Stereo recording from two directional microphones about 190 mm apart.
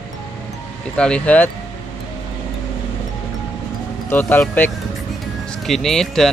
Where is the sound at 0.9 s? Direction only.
5° left (ahead or behind).